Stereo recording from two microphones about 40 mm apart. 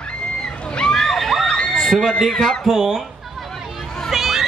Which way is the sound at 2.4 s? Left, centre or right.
Centre.